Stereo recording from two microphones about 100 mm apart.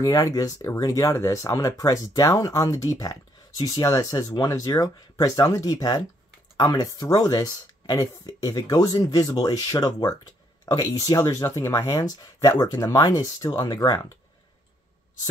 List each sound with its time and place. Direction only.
0.0 s speech: 35° left (ahead or behind)